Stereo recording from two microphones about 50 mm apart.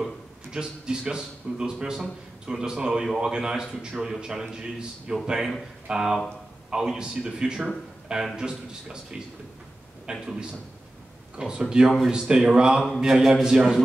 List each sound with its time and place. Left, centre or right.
0.5 s a man's voice: centre
11.3 s a man's voice: centre